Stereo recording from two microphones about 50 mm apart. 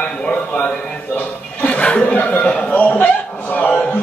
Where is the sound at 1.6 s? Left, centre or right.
Left.